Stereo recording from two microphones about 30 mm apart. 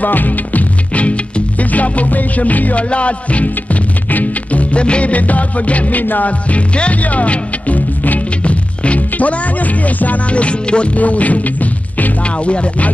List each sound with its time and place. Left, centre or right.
0.0 s music: left
1.6 s music: left
2.9 s music: left
4.1 s music: left
5.1 s music: left
6.5 s music: left
8.5 s music: left
10.3 s music: left
11.0 s speech: left
12.4 s music: left